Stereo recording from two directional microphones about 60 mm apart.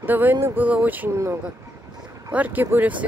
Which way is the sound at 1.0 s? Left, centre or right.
Right.